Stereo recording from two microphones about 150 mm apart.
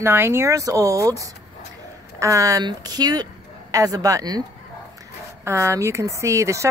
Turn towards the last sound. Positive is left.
turn(degrees=-20)  # may be behind; listen again after turning